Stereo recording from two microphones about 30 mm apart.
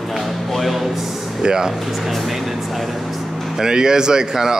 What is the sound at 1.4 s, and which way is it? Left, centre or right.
Speech, right.